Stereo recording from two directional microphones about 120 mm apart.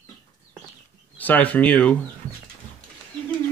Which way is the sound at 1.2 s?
15° left (ahead or behind).